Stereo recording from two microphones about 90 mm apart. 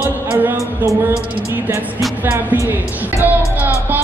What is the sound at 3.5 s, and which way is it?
Music, 20° right (ahead or behind).